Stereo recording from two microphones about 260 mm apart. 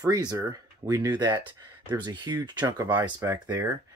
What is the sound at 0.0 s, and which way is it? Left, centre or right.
Speech, centre.